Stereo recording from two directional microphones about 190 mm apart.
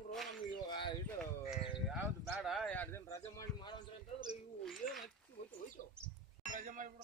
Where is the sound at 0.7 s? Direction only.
25° left (ahead or behind).